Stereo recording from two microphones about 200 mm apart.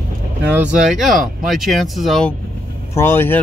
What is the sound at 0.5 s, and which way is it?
Speech, 5° right (ahead or behind).